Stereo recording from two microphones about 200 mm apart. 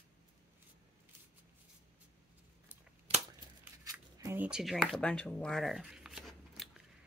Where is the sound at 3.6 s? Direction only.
15° right (ahead or behind); by 6.8 s centre (ahead or behind).